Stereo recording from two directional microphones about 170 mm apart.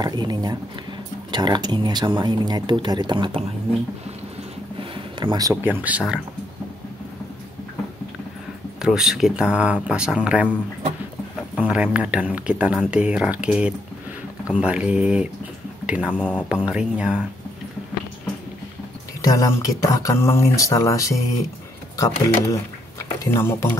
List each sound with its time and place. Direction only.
0.0 s speech: 25° right (ahead or behind)
4.9 s a sound: 25° right (ahead or behind)
5.5 s speech: 10° right (ahead or behind)
8.8 s speech: 5° right (ahead or behind)
11.5 s speech: 5° right (ahead or behind)
19.2 s speech: 20° left (ahead or behind)